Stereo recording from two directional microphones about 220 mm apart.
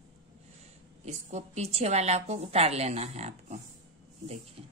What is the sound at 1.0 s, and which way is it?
A woman's voice, 30° right (ahead or behind).